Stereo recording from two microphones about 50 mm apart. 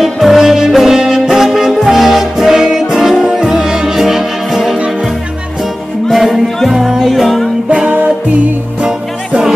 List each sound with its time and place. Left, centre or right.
0.0 s music: centre
6.0 s music: centre
7.8 s music: right